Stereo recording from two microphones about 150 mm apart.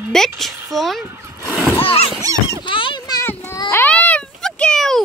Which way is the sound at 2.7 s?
35° left (ahead or behind).